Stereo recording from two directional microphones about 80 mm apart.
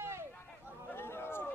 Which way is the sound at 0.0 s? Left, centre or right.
Right.